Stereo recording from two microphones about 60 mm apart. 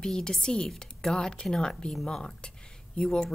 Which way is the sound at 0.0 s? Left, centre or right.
Centre.